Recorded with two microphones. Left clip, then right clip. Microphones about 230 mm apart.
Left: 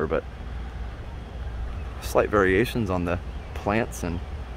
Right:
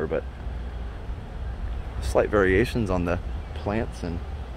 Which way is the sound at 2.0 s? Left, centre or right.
Centre.